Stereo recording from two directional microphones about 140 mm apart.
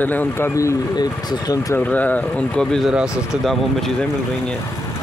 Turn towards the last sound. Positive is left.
turn(degrees=0)  # may be behind; listen again after turning